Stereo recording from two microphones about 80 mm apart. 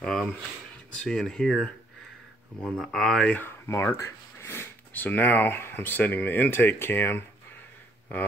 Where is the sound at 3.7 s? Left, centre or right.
Left.